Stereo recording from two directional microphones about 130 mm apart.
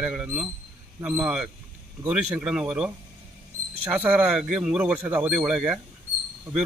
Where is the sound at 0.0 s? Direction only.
10° right (ahead or behind).